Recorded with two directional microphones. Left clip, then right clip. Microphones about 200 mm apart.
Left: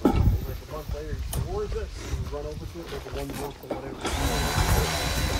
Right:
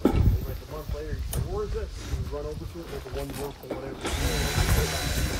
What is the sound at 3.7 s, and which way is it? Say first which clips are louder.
Printer: left 2 dB; 10° left (ahead or behind).